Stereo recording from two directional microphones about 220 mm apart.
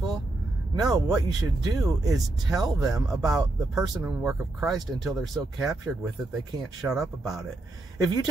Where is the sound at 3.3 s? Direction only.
Centre (ahead or behind).